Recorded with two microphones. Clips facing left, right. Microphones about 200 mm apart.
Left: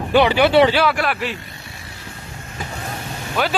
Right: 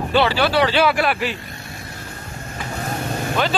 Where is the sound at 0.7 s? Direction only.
Centre (ahead or behind).